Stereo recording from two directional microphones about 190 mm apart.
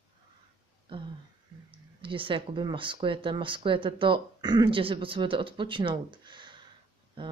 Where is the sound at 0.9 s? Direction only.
25° right (ahead or behind).